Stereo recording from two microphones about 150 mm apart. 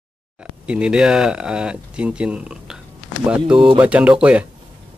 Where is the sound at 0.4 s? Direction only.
5° right (ahead or behind).